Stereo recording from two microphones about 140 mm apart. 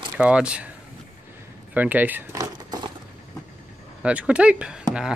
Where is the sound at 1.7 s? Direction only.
10° right (ahead or behind).